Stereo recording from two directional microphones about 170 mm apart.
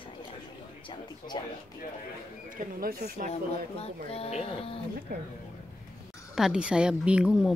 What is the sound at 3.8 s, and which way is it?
Speech, 35° left (ahead or behind).